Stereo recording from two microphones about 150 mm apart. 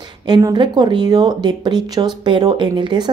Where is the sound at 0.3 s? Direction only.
30° right (ahead or behind).